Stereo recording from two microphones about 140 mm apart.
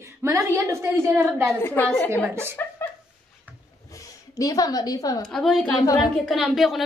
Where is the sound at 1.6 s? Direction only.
15° left (ahead or behind).